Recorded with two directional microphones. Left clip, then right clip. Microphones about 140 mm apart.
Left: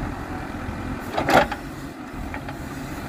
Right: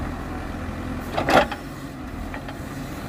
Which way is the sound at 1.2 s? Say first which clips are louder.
Even; 10° left (ahead or behind).